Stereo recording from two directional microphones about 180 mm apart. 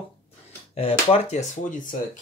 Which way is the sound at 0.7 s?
35° left (ahead or behind).